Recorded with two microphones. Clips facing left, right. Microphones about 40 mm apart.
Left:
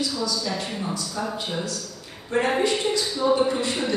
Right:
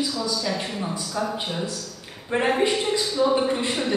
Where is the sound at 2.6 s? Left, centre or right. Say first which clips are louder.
Right 1 dB; right.